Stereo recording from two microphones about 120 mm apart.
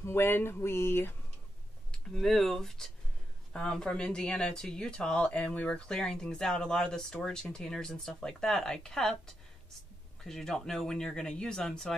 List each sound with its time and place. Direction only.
0.0 s speech: 20° left (ahead or behind)
1.9 s speech: centre (ahead or behind)
10.2 s speech: 5° left (ahead or behind)